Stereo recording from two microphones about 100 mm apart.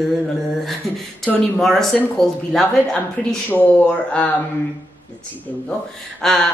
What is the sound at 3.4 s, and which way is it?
Speech, 20° left (ahead or behind).